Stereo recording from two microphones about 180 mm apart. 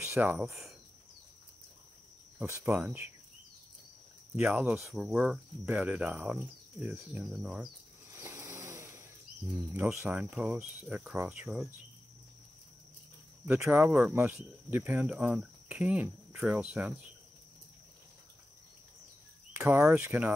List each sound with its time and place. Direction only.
0.0 s cricket: 15° right (ahead or behind)
2.3 s speech: 15° right (ahead or behind)
4.4 s speech: 5° right (ahead or behind)
8.1 s vehicle: 15° right (ahead or behind)
9.8 s speech: 10° right (ahead or behind)
13.5 s speech: 10° right (ahead or behind)
19.5 s speech: 10° right (ahead or behind)